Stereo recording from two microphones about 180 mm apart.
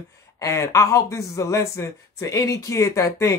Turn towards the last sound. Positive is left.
turn(degrees=15)  # may be behind; listen again after turning